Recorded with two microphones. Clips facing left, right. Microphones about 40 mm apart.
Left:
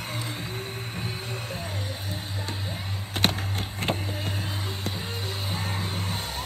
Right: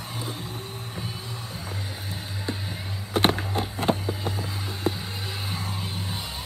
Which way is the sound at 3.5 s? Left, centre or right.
Left.